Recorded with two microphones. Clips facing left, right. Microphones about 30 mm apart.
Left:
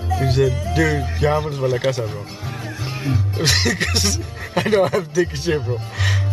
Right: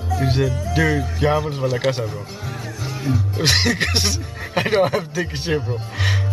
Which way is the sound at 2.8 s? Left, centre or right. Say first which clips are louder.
Right 1 dB; left.